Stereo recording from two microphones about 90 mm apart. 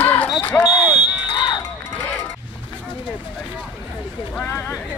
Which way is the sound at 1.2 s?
60° left (ahead or behind).